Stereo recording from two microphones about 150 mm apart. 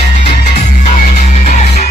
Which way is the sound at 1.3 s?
50° left (ahead or behind).